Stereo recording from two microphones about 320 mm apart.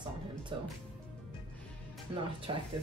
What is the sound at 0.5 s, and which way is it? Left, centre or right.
Speech, centre.